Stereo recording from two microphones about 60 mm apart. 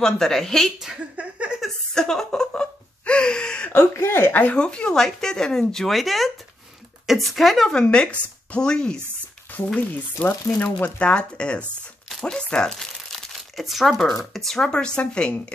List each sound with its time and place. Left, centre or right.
0.0 s speech: centre
0.7 s speech: centre
1.1 s a sound: right
2.0 s a sound: centre
3.9 s speech: left
4.6 s speech: centre
7.7 s speech: centre
10.2 s speech: left
11.1 s speech: centre
12.1 s tearing: centre
12.4 s speech: centre